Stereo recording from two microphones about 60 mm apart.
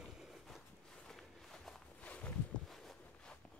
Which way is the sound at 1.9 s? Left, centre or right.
Left.